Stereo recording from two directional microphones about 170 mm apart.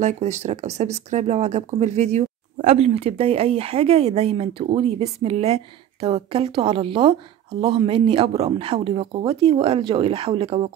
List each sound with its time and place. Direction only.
0.0 s speech: 40° right (ahead or behind)